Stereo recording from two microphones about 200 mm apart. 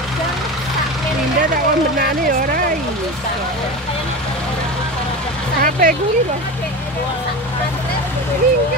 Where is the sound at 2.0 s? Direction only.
45° right (ahead or behind).